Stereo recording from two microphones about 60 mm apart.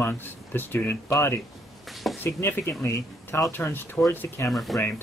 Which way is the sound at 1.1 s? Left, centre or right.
Left.